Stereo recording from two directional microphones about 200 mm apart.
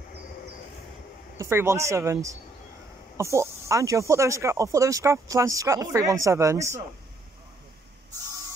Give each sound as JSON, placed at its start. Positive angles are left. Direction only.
{"t": 1.4, "sound": "speech", "side_deg": -15}